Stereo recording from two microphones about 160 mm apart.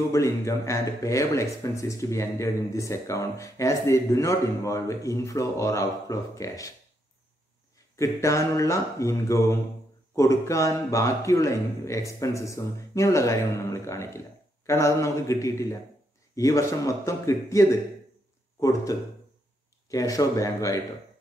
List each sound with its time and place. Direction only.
0.1 s speech: 20° left (ahead or behind)
7.9 s speech: 20° left (ahead or behind)